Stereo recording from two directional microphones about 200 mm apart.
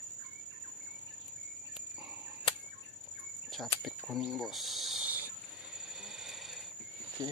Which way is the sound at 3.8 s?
Centre (ahead or behind).